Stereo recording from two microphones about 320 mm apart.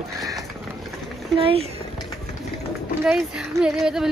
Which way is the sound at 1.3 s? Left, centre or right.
Centre.